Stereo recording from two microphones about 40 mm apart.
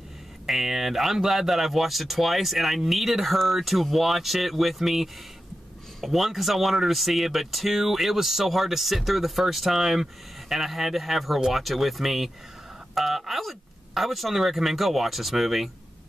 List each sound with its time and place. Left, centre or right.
0.5 s speech: centre